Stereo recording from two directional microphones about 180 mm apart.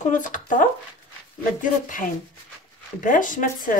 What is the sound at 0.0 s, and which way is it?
Speech, 45° left (ahead or behind).